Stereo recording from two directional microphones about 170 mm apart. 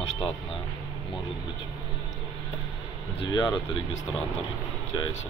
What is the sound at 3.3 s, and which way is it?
Speech, 25° left (ahead or behind).